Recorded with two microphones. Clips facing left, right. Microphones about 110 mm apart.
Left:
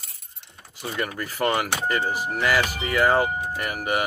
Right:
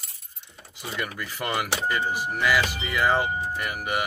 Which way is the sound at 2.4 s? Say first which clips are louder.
Left 1 dB; 45° left (ahead or behind).